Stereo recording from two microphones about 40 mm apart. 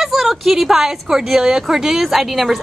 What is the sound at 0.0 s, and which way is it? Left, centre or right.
A woman's voice, centre.